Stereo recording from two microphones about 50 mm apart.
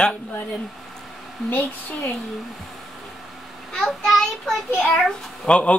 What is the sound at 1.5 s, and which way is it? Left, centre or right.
Speech, left.